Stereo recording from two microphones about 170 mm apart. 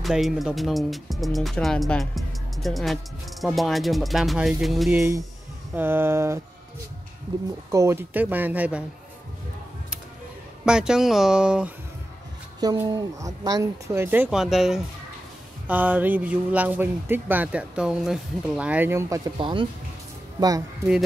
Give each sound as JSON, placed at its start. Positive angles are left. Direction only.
{"t": 0.0, "sound": "speech", "side_deg": 0}
{"t": 4.9, "sound": "speech", "side_deg": -15}
{"t": 7.7, "sound": "speech", "side_deg": -15}
{"t": 10.6, "sound": "speech", "side_deg": -5}
{"t": 12.5, "sound": "speech", "side_deg": -20}
{"t": 19.3, "sound": "speech", "side_deg": -30}